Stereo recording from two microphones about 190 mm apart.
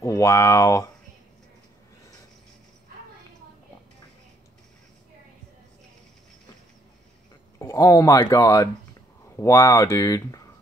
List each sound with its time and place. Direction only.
0.0 s speech: 15° left (ahead or behind)
7.5 s speech: 15° left (ahead or behind)